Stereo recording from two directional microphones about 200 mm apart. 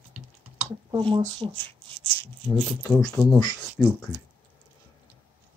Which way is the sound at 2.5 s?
20° left (ahead or behind).